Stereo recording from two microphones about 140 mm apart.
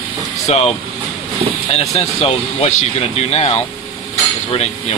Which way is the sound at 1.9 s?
50° left (ahead or behind).